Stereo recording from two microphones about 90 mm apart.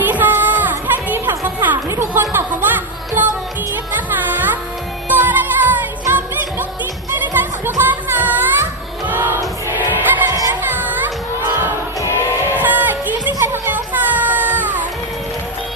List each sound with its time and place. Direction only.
0.0 s music: 20° right (ahead or behind)
12.4 s a sound: 20° right (ahead or behind)
13.4 s music: 25° right (ahead or behind)